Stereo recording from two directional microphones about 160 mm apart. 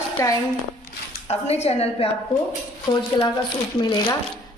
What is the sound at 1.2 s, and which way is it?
Speech, 40° left (ahead or behind).